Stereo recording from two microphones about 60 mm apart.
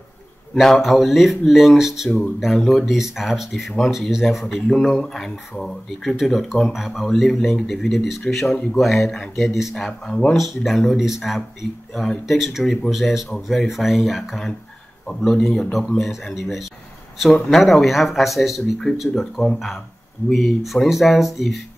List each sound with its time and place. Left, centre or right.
0.6 s speech: centre
10.3 s speech: centre
11.9 s speech: centre
12.3 s speech: centre